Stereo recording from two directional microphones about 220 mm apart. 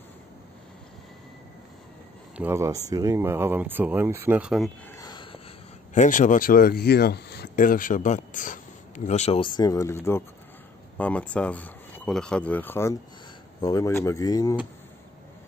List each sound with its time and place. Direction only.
2.3 s speech: 10° right (ahead or behind)
4.9 s a sound: 20° left (ahead or behind)
5.9 s speech: 35° left (ahead or behind); by 14.6 s 15° left (ahead or behind)